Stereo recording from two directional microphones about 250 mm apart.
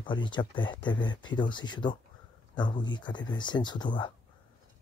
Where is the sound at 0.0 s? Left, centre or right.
Centre.